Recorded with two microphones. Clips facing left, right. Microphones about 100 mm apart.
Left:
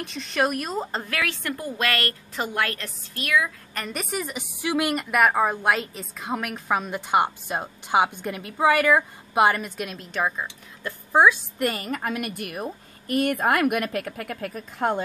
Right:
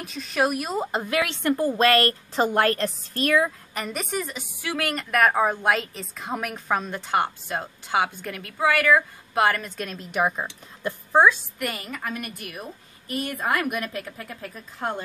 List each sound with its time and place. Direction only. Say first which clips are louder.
0.0 s a woman's voice: even; 5° right (ahead or behind); by 3.5 s 35° right (ahead or behind)
3.7 s a woman's voice: right 1 dB; 5° right (ahead or behind)
4.2 s a woman's voice: left 2 dB; 15° left (ahead or behind)
10.1 s speech: right 2 dB; 15° right (ahead or behind)
11.1 s a woman's voice: even; 5° left (ahead or behind)
11.5 s a woman's voice: left 5 dB; 30° left (ahead or behind)
11.8 s a woman's voice: left 4 dB; 55° left (ahead or behind); by 15.0 s 70° left (ahead or behind)